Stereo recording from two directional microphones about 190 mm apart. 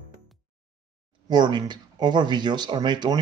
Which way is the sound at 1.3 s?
25° right (ahead or behind).